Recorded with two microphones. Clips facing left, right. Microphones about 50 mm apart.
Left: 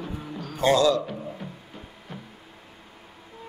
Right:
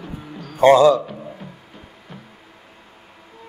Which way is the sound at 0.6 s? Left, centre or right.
Right.